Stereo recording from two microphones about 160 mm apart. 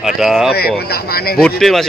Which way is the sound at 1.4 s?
Centre (ahead or behind).